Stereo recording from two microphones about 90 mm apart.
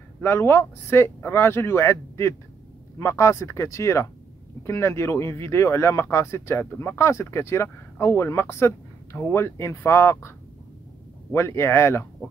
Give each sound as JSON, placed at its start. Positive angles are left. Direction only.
{"t": 0.2, "sound": "speech", "side_deg": 25}
{"t": 11.3, "sound": "speech", "side_deg": 30}